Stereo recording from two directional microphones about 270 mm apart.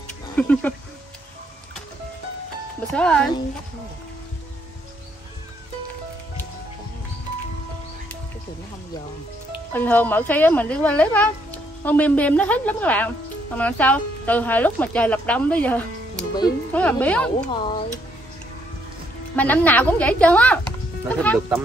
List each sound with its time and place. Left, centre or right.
0.4 s speech: centre
2.9 s speech: centre
9.7 s speech: centre
17.5 s speech: centre
19.3 s speech: centre